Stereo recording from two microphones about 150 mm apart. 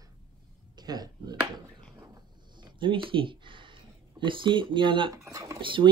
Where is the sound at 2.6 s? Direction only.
35° right (ahead or behind).